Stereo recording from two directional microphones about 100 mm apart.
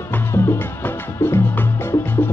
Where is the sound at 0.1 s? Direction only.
25° left (ahead or behind).